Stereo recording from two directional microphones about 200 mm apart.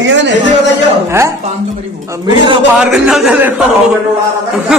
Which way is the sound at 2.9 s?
Centre (ahead or behind).